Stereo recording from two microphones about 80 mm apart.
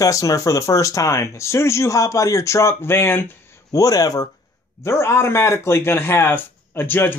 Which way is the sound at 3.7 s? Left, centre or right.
Left.